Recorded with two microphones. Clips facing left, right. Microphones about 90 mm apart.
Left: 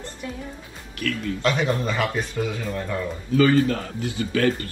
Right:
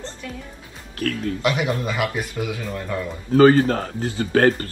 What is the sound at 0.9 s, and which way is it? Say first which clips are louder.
Speech: right 3 dB; 40° right (ahead or behind).